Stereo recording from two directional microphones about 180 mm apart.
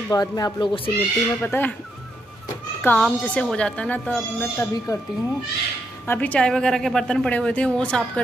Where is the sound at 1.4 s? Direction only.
10° left (ahead or behind).